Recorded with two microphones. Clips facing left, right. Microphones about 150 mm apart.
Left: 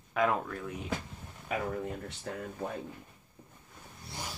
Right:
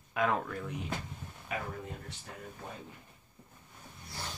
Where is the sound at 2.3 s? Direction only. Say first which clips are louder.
Left 11 dB; 65° left (ahead or behind).